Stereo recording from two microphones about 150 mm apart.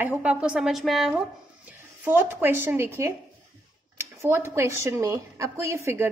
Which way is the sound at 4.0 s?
15° right (ahead or behind).